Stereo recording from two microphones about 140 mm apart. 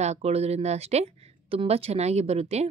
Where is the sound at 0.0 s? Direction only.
50° right (ahead or behind).